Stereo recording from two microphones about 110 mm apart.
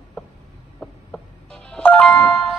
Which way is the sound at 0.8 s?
10° left (ahead or behind).